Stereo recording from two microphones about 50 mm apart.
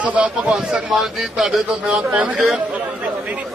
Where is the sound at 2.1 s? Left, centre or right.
Right.